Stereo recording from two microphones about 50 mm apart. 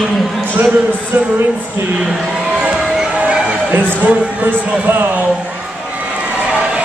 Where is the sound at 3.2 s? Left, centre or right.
Right.